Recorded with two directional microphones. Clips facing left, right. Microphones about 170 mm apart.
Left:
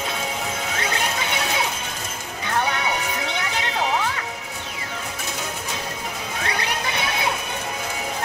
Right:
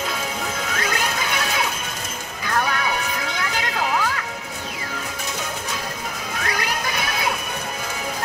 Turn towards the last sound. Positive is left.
turn(degrees=25)  # may be behind; listen again after turning